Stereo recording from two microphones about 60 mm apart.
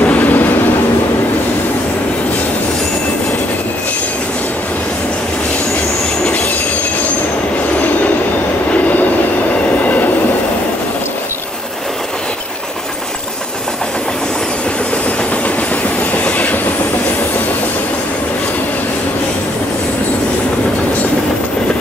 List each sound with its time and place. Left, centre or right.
0.0 s vehicle: left
16.3 s train: left